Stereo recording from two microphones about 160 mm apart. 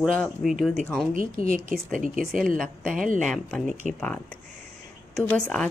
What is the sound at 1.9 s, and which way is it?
Speech, 55° right (ahead or behind).